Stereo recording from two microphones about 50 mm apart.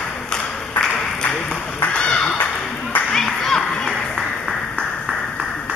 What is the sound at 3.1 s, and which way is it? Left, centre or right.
Clapping, centre.